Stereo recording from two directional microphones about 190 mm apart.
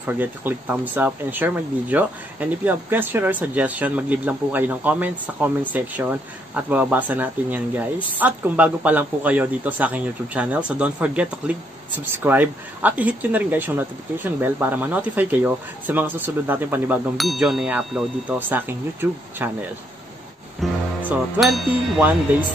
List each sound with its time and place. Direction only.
0.0 s speech: 10° right (ahead or behind)
20.6 s speech: centre (ahead or behind)